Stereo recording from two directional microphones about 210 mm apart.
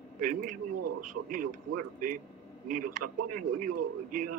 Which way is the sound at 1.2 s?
90° right.